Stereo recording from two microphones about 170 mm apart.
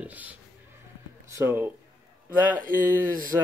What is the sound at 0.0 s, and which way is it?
Speech, 10° right (ahead or behind).